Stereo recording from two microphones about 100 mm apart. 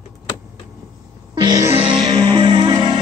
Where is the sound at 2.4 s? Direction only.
55° right (ahead or behind).